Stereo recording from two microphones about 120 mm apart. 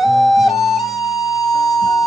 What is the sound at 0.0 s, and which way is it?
Flute, centre (ahead or behind).